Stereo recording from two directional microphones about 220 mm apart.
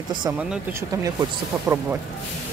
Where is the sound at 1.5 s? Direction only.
Centre (ahead or behind).